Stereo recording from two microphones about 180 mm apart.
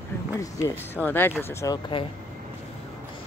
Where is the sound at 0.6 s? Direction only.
10° left (ahead or behind).